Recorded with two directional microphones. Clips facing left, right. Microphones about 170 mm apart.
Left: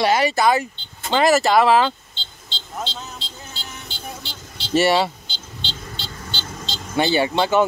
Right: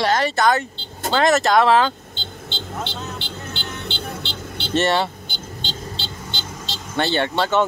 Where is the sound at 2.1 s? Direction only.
60° right (ahead or behind).